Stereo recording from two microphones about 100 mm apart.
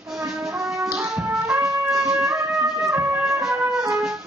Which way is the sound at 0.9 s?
30° right (ahead or behind).